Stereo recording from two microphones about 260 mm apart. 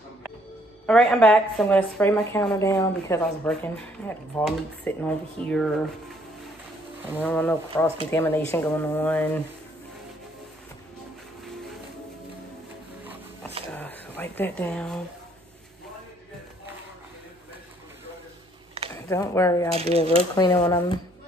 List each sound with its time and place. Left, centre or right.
0.8 s a woman's voice: centre
7.2 s speech: centre
13.7 s a sound: centre
19.0 s speech: centre
19.7 s speech: right
20.3 s speech: centre